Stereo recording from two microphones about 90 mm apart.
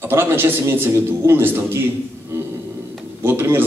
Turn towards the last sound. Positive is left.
turn(degrees=-25)  # may be behind; listen again after turning